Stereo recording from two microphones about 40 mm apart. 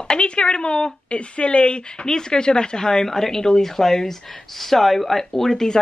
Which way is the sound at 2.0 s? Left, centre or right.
Centre.